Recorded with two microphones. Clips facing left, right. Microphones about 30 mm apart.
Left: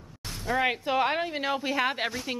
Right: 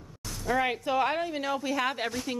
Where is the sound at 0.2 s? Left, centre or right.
Left.